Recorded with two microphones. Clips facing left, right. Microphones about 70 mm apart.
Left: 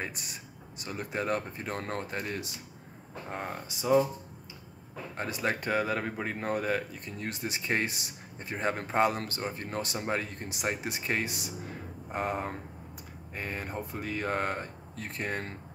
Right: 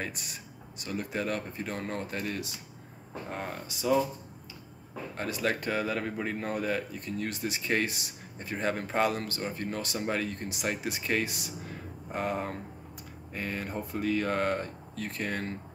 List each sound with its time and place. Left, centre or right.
0.7 s speech: left
5.1 s speech: left